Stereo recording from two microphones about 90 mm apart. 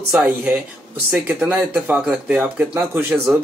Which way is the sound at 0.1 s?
15° right (ahead or behind).